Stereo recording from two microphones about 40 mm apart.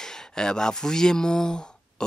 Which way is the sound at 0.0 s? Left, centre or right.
Centre.